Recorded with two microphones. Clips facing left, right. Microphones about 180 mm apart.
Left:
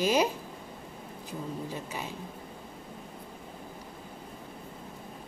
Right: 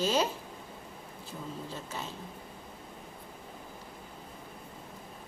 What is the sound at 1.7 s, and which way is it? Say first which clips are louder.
Speech: left 3 dB; 15° left (ahead or behind).